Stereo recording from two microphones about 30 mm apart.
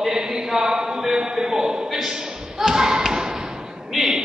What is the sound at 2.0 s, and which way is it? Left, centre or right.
Thump, right.